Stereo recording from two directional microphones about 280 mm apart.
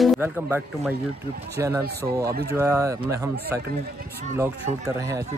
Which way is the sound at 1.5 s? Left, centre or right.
Centre.